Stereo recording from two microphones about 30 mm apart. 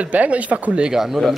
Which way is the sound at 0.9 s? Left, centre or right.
Centre.